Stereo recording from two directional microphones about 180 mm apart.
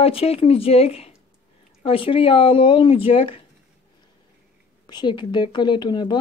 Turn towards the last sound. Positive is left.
turn(degrees=25)  # may be behind; listen again after turning